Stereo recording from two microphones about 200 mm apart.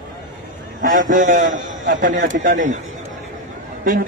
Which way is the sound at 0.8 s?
40° right (ahead or behind).